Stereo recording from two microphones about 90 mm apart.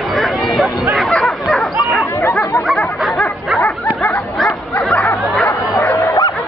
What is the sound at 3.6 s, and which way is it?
Bow-wow, 20° left (ahead or behind).